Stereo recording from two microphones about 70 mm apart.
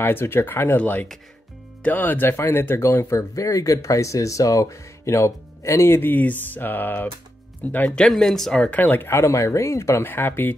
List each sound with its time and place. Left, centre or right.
0.0 s speech: left
8.1 s speech: centre
8.7 s speech: left
10.0 s speech: left